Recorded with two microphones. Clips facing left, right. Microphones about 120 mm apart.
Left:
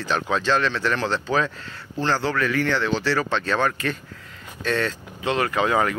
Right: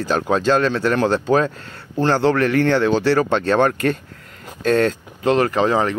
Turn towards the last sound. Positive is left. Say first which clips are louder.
# right 4 dB
turn(degrees=-30)  # may be behind; listen again after turning